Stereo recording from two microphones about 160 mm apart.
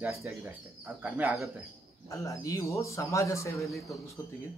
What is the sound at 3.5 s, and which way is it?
Speech, centre (ahead or behind).